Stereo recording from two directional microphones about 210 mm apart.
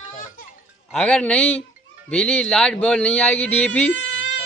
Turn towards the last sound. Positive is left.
turn(degrees=65)  # may be behind; listen again after turning